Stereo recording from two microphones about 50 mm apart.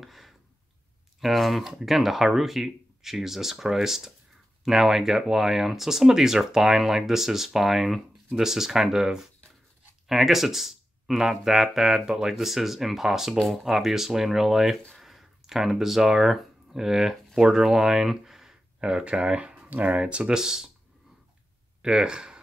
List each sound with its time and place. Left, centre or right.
0.0 s a sound: centre
1.2 s speech: centre
21.8 s speech: centre